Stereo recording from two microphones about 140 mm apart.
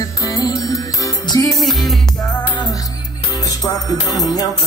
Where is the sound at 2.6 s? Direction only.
25° left (ahead or behind).